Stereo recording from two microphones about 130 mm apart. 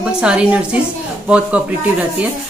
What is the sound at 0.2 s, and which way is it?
Speech, 10° right (ahead or behind).